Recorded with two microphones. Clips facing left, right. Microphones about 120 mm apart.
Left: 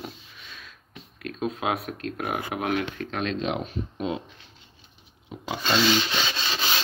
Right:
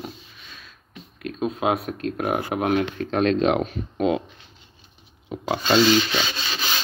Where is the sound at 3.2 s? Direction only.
55° right (ahead or behind); by 4.2 s 75° right (ahead or behind).